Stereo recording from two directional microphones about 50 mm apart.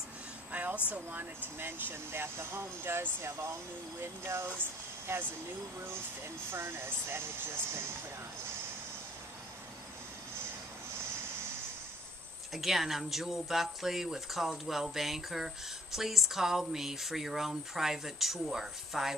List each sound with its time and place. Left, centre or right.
0.5 s a sound: right
1.6 s speech: right
4.0 s speech: right
12.5 s speech: centre